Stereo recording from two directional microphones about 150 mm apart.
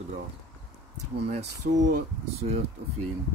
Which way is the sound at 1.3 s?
45° right (ahead or behind).